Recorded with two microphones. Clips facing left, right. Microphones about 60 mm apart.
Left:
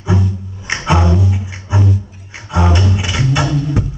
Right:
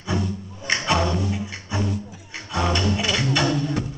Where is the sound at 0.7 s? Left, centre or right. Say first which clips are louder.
Left 6 dB; centre.